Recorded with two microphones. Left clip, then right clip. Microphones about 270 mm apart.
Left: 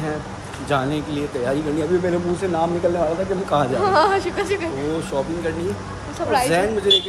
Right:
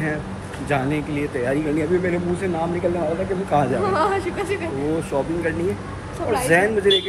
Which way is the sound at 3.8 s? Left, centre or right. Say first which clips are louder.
Left 3 dB; left.